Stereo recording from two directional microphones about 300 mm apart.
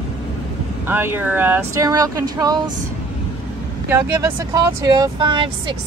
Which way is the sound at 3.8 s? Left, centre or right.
Centre.